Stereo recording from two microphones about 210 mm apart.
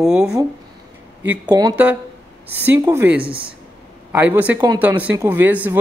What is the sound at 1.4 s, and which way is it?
Speech, 20° right (ahead or behind).